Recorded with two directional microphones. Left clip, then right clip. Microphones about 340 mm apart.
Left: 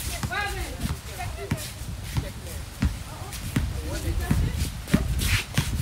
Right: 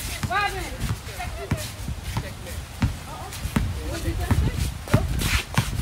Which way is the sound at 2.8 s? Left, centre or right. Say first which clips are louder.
Right 3 dB; centre.